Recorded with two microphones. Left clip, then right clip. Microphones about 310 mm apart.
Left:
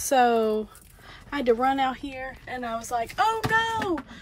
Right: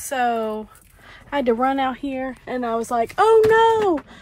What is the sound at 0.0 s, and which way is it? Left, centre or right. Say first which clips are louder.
Speech: left 1 dB; centre.